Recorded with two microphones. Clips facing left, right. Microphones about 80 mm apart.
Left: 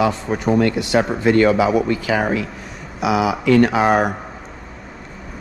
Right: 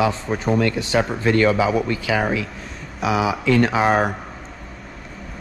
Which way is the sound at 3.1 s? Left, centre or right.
Left.